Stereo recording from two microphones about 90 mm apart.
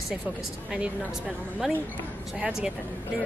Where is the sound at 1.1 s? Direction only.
5° right (ahead or behind).